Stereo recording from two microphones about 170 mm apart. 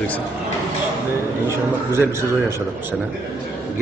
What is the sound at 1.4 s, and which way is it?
A man's voice, 15° right (ahead or behind).